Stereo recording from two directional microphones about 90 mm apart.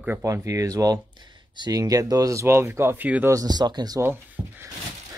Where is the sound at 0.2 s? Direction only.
35° right (ahead or behind).